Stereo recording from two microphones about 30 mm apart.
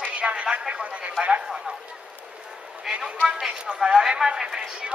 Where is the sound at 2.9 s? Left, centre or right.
Centre.